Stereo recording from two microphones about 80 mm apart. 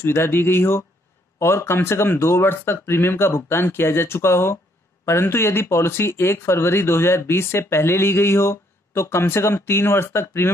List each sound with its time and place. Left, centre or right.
0.0 s speech: left